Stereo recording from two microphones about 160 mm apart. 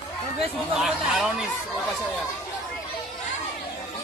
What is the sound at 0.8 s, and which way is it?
Speech, centre (ahead or behind).